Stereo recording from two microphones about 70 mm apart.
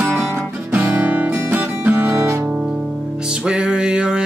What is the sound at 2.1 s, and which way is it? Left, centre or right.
Guitar, right.